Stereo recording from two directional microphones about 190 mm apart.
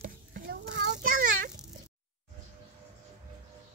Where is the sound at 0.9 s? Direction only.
50° right (ahead or behind).